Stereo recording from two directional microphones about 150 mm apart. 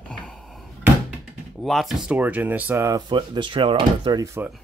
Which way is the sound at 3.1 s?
30° right (ahead or behind).